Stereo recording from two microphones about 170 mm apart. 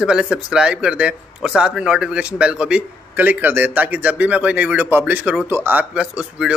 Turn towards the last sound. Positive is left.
turn(degrees=-5)  # may be behind; listen again after turning